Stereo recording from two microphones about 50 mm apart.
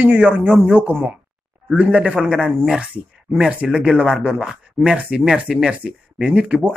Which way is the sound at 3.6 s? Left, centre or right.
Centre.